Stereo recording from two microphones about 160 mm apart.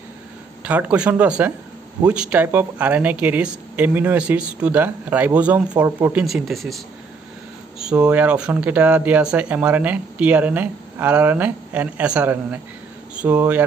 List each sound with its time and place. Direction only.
0.7 s speech: 10° right (ahead or behind)
6.2 s speech: centre (ahead or behind)
7.8 s speech: 5° right (ahead or behind)